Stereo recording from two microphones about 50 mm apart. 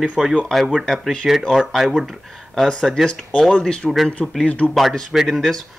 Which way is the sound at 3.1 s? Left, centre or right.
Left.